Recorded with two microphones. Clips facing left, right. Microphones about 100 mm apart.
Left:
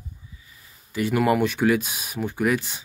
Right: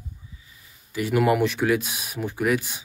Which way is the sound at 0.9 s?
5° right (ahead or behind).